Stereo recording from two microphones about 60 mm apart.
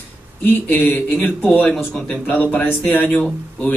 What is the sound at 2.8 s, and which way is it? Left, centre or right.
Speech, left.